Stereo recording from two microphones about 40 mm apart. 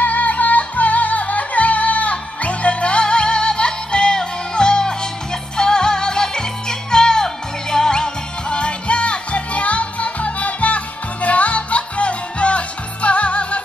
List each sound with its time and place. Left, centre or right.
0.0 s music: left